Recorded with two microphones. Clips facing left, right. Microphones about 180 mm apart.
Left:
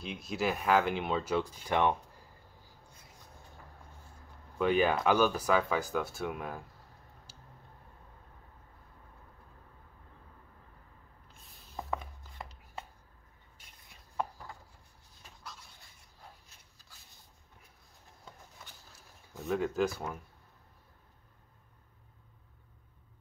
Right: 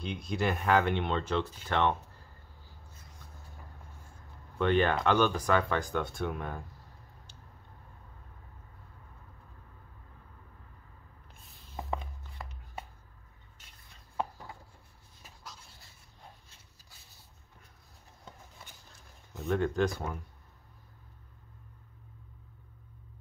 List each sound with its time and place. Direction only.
0.0 s speech: 5° left (ahead or behind)
4.6 s speech: 5° left (ahead or behind)
19.3 s speech: 5° left (ahead or behind)